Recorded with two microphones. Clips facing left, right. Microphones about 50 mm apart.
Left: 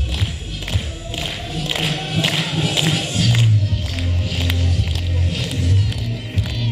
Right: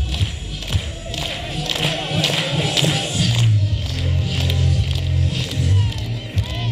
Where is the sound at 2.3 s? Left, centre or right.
Centre.